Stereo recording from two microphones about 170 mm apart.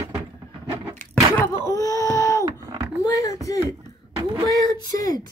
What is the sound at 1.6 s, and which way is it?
Wail, 20° left (ahead or behind).